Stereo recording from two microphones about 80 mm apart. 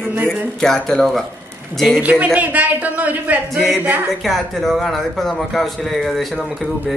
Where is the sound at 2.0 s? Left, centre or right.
Centre.